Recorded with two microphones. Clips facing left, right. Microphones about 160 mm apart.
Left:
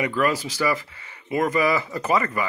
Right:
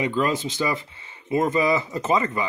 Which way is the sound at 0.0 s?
25° right (ahead or behind).